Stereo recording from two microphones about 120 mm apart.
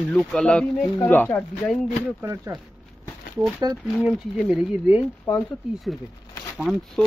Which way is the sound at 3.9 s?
10° right (ahead or behind).